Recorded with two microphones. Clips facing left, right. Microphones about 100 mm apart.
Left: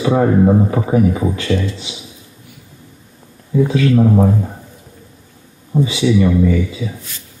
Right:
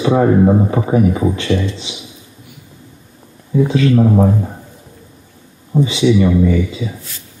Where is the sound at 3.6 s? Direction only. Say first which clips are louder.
Right 1 dB; 15° right (ahead or behind).